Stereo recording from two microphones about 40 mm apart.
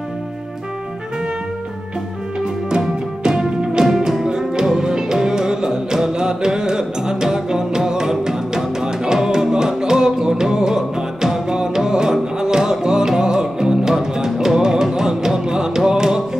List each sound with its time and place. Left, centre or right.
2.8 s music: centre